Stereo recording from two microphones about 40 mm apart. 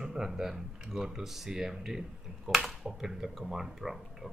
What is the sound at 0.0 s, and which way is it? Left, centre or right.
Speech, centre.